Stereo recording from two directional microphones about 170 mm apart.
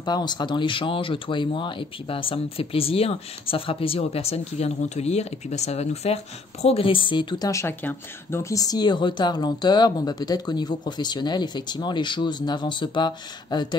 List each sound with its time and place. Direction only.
0.0 s speech: 25° left (ahead or behind)